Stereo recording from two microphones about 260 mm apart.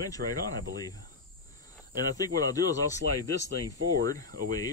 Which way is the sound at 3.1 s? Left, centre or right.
Left.